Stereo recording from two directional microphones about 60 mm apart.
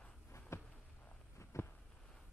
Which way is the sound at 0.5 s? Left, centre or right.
Left.